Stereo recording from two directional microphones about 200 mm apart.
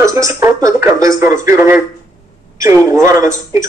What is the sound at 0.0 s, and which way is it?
A man's voice, 15° right (ahead or behind).